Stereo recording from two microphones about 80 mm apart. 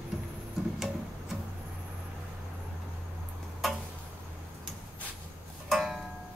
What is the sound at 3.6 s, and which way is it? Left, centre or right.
Tick-tock, centre.